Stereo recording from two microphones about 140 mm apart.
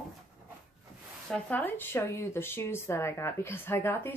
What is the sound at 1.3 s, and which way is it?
Speech, 10° left (ahead or behind).